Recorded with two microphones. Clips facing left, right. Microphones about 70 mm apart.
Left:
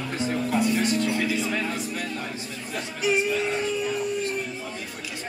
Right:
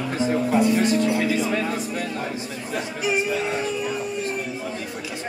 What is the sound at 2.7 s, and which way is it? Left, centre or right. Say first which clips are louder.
Chatter: right 1 dB; centre.